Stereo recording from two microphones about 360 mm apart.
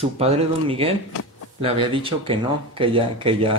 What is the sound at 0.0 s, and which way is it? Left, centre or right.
Speech, centre.